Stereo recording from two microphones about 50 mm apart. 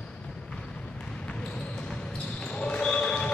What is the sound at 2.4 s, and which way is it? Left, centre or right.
Basketball bounce, left.